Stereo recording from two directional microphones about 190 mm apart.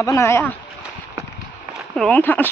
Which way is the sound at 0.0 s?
15° left (ahead or behind).